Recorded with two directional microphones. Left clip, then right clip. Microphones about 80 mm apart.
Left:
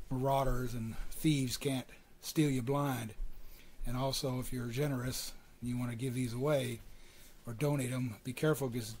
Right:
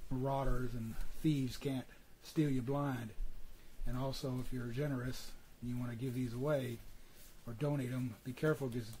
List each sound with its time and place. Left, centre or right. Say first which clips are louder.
0.1 s speech: left 6 dB; left